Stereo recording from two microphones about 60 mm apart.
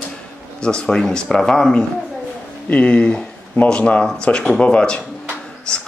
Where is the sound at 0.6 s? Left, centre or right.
Centre.